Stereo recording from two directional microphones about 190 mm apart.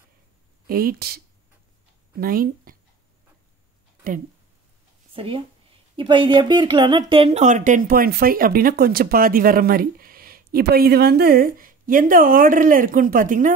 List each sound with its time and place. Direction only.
0.7 s speech: 50° right (ahead or behind)
5.1 s speech: 30° right (ahead or behind); by 13.5 s 45° right (ahead or behind)